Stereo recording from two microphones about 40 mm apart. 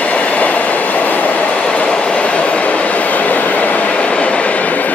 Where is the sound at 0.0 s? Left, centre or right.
Left.